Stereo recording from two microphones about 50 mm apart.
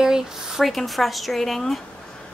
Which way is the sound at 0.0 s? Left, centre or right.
Centre.